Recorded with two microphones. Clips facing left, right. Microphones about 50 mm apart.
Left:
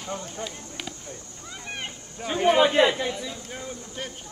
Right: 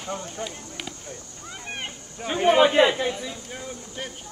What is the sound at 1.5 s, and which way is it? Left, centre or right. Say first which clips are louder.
Speech: right 1 dB; right.